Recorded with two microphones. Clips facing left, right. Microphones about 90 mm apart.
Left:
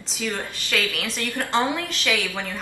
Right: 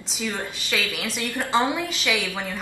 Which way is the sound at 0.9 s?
5° right (ahead or behind).